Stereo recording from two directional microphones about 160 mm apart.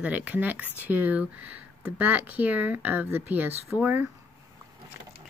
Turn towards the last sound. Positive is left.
turn(degrees=-10)  # may be behind; listen again after turning